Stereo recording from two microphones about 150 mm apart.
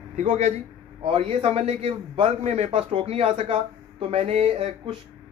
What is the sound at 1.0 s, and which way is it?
A man's voice, 35° right (ahead or behind).